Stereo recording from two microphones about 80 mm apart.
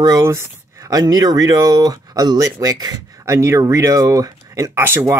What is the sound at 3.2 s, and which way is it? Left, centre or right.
Speech, right.